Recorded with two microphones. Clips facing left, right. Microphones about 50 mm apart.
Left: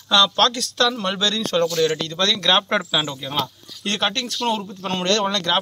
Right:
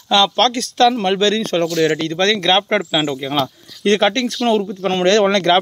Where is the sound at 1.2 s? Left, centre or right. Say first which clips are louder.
Right 4 dB; right.